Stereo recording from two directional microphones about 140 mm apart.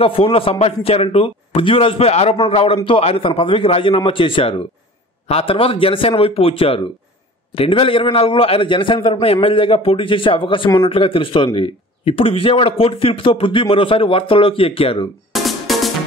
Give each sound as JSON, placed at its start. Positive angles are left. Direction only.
{"t": 0.0, "sound": "a man's voice", "side_deg": 40}
{"t": 15.3, "sound": "music", "side_deg": 0}